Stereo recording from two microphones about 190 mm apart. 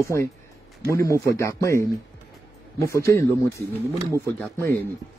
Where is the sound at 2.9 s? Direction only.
15° left (ahead or behind).